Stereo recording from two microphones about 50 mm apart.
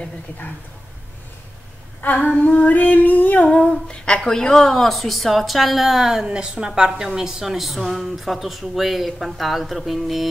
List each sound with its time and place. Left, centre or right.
2.0 s female singing: left
3.7 s speech: centre
6.2 s a woman's voice: centre